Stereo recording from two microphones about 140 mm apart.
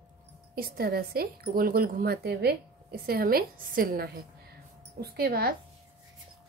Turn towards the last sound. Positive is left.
turn(degrees=-90)